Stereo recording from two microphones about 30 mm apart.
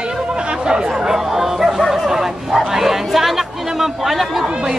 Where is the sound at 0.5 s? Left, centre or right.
Right.